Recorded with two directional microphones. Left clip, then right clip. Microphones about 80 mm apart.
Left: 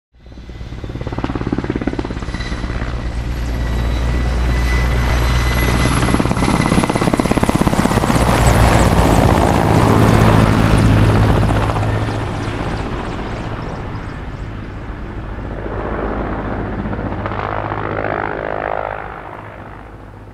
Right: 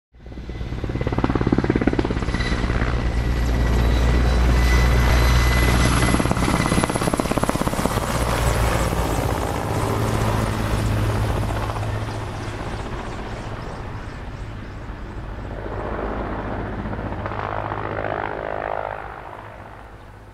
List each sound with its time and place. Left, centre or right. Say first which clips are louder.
1.1 s helicopter: even; centre
3.6 s vehicle: even; centre; by 13.4 s left
15.7 s vehicle: left 6 dB; left